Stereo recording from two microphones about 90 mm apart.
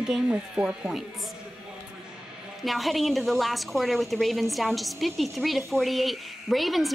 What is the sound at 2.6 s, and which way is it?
A woman's voice, centre (ahead or behind).